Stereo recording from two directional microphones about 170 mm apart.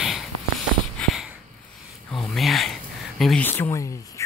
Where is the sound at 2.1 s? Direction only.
Centre (ahead or behind).